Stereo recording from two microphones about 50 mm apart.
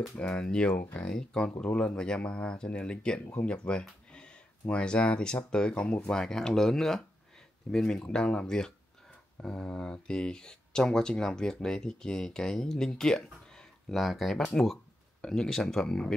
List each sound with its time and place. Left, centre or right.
0.1 s speech: centre
13.9 s speech: centre